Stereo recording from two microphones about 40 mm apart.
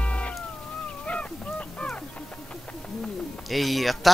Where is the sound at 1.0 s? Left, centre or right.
Left.